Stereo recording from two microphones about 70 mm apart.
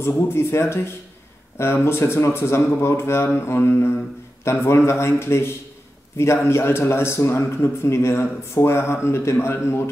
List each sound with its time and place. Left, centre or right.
0.0 s a man's voice: left